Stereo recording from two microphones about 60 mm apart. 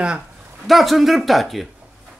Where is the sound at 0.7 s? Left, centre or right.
Centre.